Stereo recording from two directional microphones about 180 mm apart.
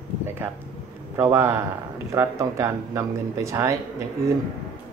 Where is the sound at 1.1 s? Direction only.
15° right (ahead or behind).